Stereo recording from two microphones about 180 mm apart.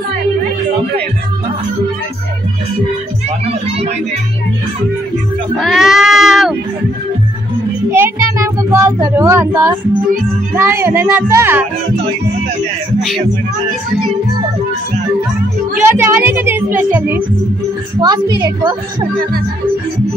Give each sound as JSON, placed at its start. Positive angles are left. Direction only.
{"t": 3.3, "sound": "speech", "side_deg": -35}
{"t": 5.6, "sound": "sheep", "side_deg": 0}
{"t": 7.9, "sound": "speech", "side_deg": -15}
{"t": 15.9, "sound": "speech", "side_deg": -10}
{"t": 18.0, "sound": "a woman's voice", "side_deg": -20}